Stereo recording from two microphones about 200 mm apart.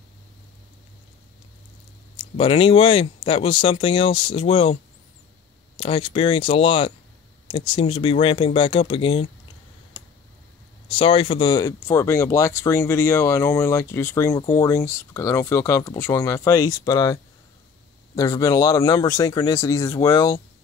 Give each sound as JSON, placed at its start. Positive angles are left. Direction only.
{"t": 2.1, "sound": "speech", "side_deg": 25}
{"t": 5.8, "sound": "speech", "side_deg": 25}
{"t": 10.9, "sound": "speech", "side_deg": 25}